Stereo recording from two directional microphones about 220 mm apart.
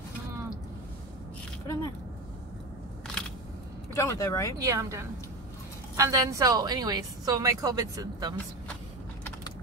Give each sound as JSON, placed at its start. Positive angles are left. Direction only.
{"t": 3.9, "sound": "speech", "side_deg": 15}
{"t": 4.6, "sound": "a woman's voice", "side_deg": -15}